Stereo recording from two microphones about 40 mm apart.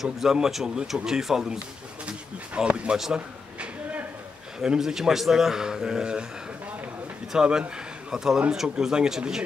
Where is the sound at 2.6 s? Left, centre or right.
Right.